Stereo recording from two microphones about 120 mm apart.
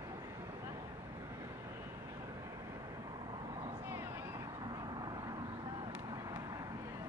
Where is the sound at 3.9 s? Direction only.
25° right (ahead or behind).